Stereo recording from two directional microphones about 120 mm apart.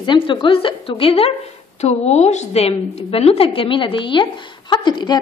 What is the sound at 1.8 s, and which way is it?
A woman's voice, 65° left (ahead or behind).